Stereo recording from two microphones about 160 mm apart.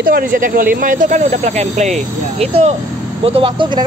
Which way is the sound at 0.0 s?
65° right (ahead or behind).